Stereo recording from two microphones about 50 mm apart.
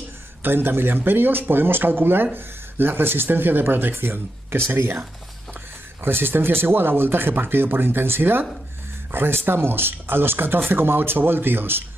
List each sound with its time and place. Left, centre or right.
0.4 s speech: right
6.0 s speech: right